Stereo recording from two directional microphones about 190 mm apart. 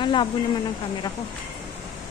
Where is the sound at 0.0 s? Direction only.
25° left (ahead or behind).